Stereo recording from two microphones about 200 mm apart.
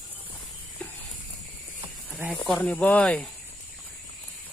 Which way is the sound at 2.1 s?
Centre (ahead or behind).